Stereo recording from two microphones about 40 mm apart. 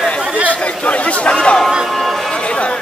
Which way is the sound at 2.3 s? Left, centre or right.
Left.